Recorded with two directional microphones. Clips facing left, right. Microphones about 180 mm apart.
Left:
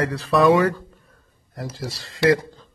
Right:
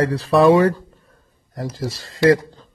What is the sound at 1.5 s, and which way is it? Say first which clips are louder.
Speech: right 5 dB; 45° right (ahead or behind).